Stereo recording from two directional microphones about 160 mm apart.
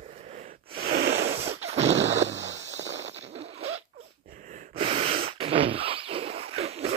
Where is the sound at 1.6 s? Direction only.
40° right (ahead or behind).